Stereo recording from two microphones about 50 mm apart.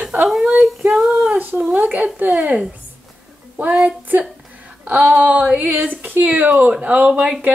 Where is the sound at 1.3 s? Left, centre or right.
Right.